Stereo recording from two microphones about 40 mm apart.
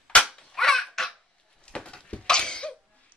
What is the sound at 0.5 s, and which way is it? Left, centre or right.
Babbling, centre.